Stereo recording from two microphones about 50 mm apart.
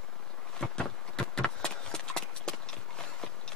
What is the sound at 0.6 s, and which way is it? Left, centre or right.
Clip-clop, centre.